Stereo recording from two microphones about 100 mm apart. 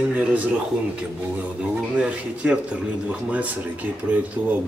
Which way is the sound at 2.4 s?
15° right (ahead or behind).